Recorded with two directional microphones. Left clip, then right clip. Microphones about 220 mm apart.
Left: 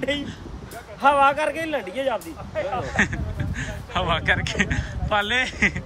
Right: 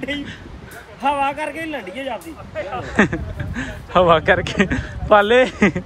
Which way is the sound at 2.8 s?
10° left (ahead or behind).